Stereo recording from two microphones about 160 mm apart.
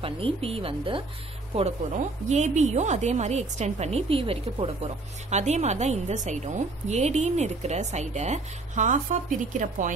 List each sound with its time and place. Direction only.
0.0 s speech: 35° right (ahead or behind)
2.2 s a woman's voice: 45° right (ahead or behind)